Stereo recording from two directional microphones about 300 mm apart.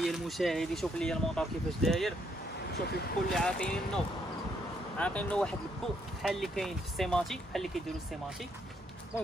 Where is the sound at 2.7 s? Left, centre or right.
Left.